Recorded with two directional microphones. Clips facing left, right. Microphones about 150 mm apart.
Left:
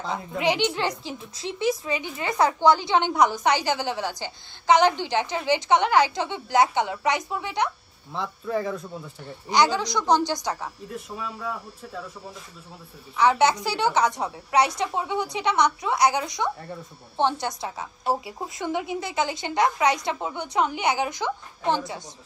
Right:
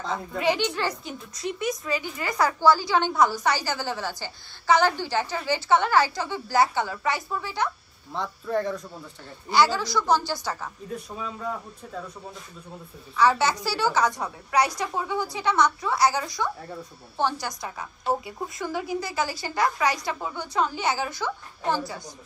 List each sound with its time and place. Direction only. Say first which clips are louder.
0.0 s speech: even; centre (ahead or behind)
0.4 s a woman's voice: left 1 dB; 20° left (ahead or behind)
8.1 s speech: even; centre (ahead or behind)
9.5 s a woman's voice: even; 20° left (ahead or behind)
11.0 s speech: even; 5° left (ahead or behind)
13.1 s a woman's voice: left 2 dB; 20° left (ahead or behind)